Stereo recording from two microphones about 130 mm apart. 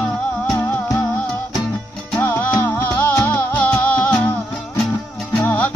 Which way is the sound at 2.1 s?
15° left (ahead or behind).